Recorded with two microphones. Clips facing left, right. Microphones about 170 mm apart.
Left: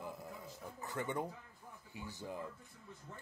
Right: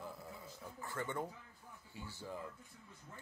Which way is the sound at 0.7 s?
20° left (ahead or behind).